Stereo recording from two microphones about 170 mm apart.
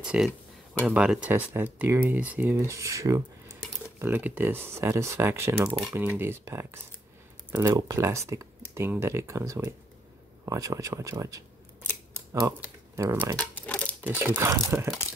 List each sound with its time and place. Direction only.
0.0 s speech: 5° right (ahead or behind)
5.7 s speech: centre (ahead or behind)
6.1 s speech: 15° right (ahead or behind)
13.6 s a sound: 10° left (ahead or behind)
14.0 s speech: 10° right (ahead or behind)